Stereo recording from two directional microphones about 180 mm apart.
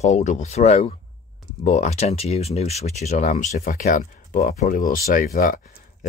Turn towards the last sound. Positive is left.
turn(degrees=50)  # may be behind; listen again after turning